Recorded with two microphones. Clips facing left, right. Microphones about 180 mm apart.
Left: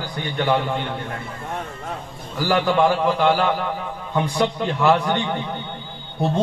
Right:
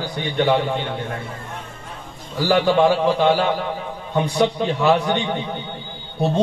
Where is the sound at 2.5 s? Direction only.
25° right (ahead or behind).